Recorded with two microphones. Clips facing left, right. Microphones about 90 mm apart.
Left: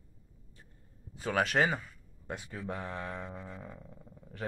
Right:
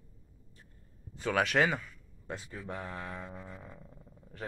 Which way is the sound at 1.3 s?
40° left (ahead or behind).